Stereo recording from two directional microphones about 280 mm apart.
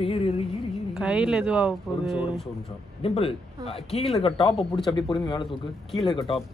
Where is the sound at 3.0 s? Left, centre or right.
Left.